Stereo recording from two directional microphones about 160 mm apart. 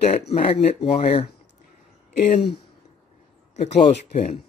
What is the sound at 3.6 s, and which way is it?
Speech, 45° left (ahead or behind).